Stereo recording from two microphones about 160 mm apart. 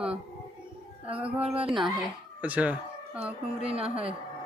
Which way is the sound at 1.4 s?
35° right (ahead or behind).